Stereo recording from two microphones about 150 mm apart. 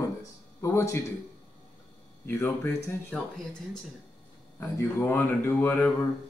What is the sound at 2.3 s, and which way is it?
Speech, 15° left (ahead or behind).